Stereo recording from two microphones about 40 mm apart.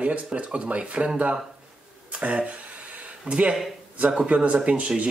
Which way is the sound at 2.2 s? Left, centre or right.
Right.